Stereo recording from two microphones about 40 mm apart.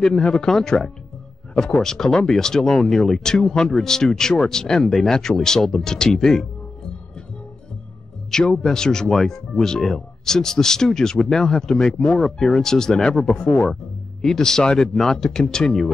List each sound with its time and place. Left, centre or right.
0.0 s speech: centre
8.3 s speech: centre